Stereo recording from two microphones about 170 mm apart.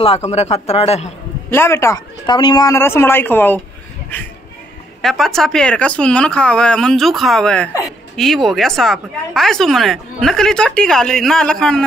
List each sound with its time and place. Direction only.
0.0 s speech: 35° left (ahead or behind)
1.5 s speech: 15° left (ahead or behind)